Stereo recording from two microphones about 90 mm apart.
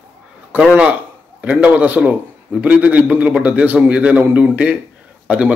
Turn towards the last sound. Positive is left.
turn(degrees=-15)  # may be behind; listen again after turning